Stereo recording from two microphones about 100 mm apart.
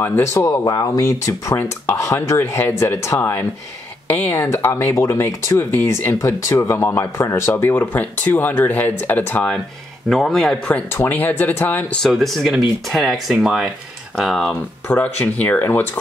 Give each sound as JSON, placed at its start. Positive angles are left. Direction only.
{"t": 0.0, "sound": "speech", "side_deg": 25}
{"t": 0.7, "sound": "speech", "side_deg": 40}
{"t": 10.0, "sound": "speech", "side_deg": 5}
{"t": 10.7, "sound": "speech", "side_deg": 20}
{"t": 12.1, "sound": "speech", "side_deg": 5}
{"t": 14.9, "sound": "speech", "side_deg": 15}